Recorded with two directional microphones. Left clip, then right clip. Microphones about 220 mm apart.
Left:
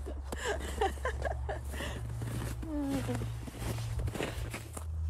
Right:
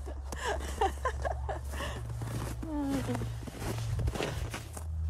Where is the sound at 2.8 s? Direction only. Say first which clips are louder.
Right 2 dB; 40° right (ahead or behind).